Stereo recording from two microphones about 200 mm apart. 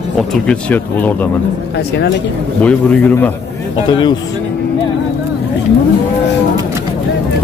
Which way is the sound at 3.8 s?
25° left (ahead or behind).